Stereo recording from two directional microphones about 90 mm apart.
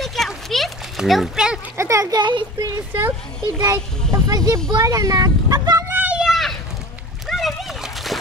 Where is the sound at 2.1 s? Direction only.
60° right (ahead or behind).